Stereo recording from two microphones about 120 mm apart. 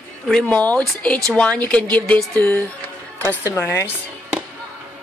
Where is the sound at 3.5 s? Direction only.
25° left (ahead or behind).